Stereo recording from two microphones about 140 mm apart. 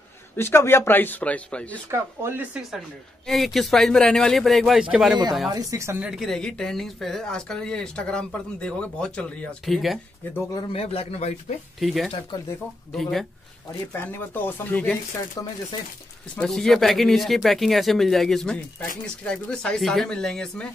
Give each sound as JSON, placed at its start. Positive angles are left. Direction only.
{"t": 0.4, "sound": "speech", "side_deg": 20}
{"t": 1.9, "sound": "speech", "side_deg": -15}
{"t": 3.3, "sound": "speech", "side_deg": 0}
{"t": 5.5, "sound": "a woman's voice", "side_deg": -25}
{"t": 5.9, "sound": "speech", "side_deg": -5}
{"t": 10.7, "sound": "speech", "side_deg": 45}
{"t": 11.8, "sound": "speech", "side_deg": 0}
{"t": 13.9, "sound": "speech", "side_deg": 15}
{"t": 15.4, "sound": "speech", "side_deg": 25}
{"t": 16.3, "sound": "speech", "side_deg": 0}